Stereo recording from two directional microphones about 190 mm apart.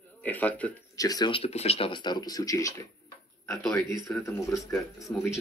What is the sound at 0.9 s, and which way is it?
Speech, 20° left (ahead or behind).